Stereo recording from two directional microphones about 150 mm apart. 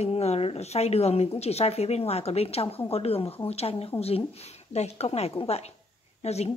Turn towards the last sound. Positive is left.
turn(degrees=45)  # may be behind; listen again after turning